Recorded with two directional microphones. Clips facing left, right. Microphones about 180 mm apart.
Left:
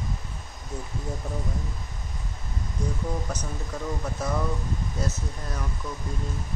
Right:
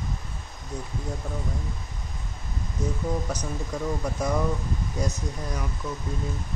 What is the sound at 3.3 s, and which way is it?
Speech, 10° right (ahead or behind).